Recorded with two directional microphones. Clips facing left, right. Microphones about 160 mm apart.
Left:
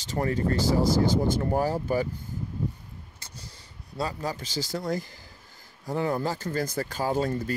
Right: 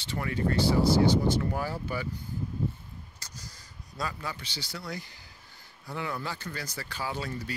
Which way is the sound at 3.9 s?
30° left (ahead or behind).